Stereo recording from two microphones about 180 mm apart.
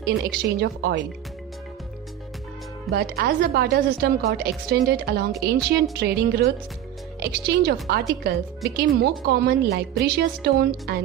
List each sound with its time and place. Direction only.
0.0 s a woman's voice: 60° right (ahead or behind)
2.9 s a woman's voice: 60° right (ahead or behind)